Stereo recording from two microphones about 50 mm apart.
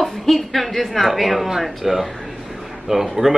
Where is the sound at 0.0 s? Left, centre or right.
Centre.